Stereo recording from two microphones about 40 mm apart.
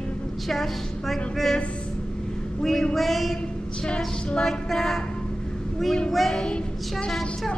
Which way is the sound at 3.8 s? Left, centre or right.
Left.